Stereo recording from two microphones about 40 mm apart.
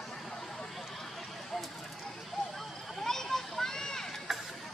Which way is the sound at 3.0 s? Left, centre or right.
Centre.